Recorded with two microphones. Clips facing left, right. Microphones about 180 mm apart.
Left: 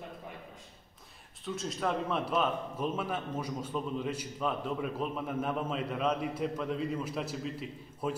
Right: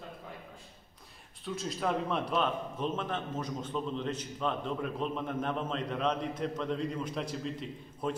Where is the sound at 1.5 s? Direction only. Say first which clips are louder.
Even; centre (ahead or behind).